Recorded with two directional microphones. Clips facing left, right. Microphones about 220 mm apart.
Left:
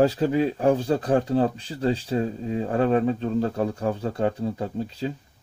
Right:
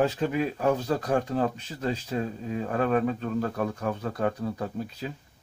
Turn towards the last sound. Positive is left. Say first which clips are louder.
# left 5 dB
turn(degrees=30)  # may be behind; listen again after turning